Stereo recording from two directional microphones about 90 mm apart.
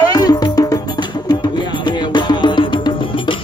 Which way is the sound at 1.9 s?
55° left (ahead or behind).